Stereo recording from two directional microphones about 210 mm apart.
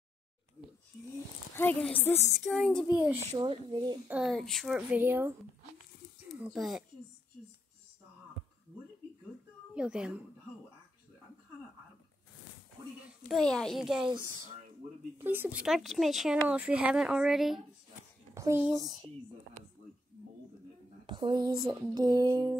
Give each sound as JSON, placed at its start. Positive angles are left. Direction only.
{"t": 1.5, "sound": "speech", "side_deg": 10}
{"t": 2.0, "sound": "a sound", "side_deg": 10}
{"t": 2.4, "sound": "speech", "side_deg": 0}
{"t": 3.3, "sound": "a sound", "side_deg": -20}
{"t": 4.1, "sound": "speech", "side_deg": 0}
{"t": 9.8, "sound": "speech", "side_deg": -5}
{"t": 13.3, "sound": "speech", "side_deg": 5}
{"t": 14.8, "sound": "speech", "side_deg": -35}
{"t": 15.1, "sound": "speech", "side_deg": -10}
{"t": 18.3, "sound": "speech", "side_deg": -15}
{"t": 21.1, "sound": "speech", "side_deg": -20}
{"t": 21.6, "sound": "a sound", "side_deg": -20}